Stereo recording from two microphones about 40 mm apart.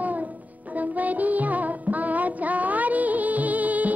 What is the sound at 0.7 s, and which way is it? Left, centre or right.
Music, right.